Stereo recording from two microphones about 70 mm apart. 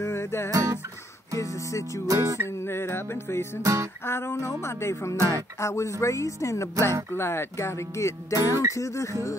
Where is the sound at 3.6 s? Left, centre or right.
Right.